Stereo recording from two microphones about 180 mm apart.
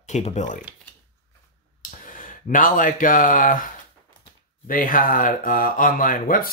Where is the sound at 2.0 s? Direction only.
50° left (ahead or behind).